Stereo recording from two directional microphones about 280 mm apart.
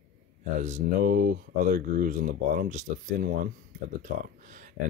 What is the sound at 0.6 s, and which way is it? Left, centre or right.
Speech, right.